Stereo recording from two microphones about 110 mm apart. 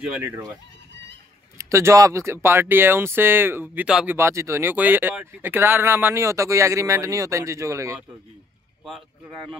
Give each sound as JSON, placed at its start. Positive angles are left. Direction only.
{"t": 1.6, "sound": "speech", "side_deg": -25}
{"t": 4.2, "sound": "speech", "side_deg": -25}
{"t": 8.8, "sound": "speech", "side_deg": 0}